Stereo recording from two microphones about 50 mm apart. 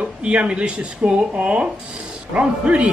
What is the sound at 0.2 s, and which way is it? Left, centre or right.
A man's voice, right.